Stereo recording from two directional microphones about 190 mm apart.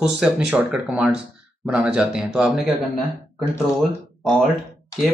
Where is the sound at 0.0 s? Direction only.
5° right (ahead or behind).